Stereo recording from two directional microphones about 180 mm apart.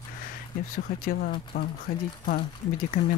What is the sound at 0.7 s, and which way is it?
Speech, 55° left (ahead or behind).